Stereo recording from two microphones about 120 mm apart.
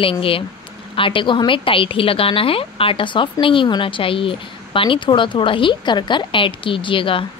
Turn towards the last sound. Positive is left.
turn(degrees=45)  # may be behind; listen again after turning